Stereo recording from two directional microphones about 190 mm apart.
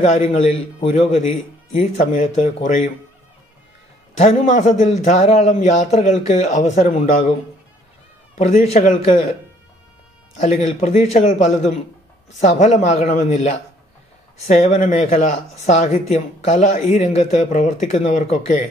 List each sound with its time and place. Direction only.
0.0 s speech: 40° left (ahead or behind)
4.2 s speech: 40° left (ahead or behind)
8.4 s speech: 40° left (ahead or behind)
10.4 s speech: 40° left (ahead or behind)